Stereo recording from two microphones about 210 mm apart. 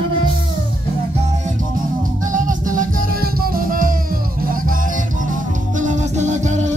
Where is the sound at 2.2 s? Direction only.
40° right (ahead or behind).